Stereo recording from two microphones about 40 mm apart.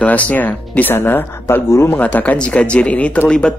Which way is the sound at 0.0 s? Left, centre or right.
Left.